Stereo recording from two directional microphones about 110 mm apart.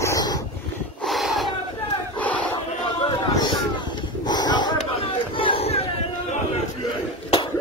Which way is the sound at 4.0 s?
40° left (ahead or behind).